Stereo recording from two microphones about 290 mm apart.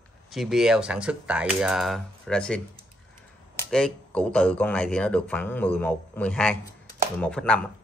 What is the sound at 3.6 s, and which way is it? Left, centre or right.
Speech, centre.